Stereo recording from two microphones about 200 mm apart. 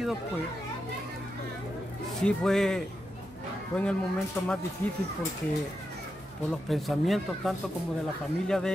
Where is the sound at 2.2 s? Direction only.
Centre (ahead or behind).